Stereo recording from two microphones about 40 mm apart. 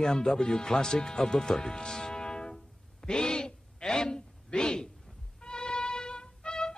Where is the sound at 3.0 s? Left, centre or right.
Centre.